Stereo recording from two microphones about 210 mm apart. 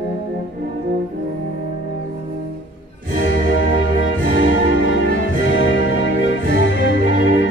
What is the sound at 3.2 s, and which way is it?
Music, 65° left (ahead or behind).